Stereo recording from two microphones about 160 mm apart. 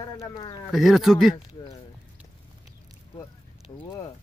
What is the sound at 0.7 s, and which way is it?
Speech, centre (ahead or behind).